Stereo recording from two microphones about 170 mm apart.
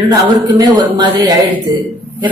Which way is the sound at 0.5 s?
25° right (ahead or behind).